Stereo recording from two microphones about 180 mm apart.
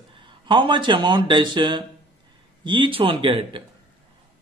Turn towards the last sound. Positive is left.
turn(degrees=-30)  # may be behind; listen again after turning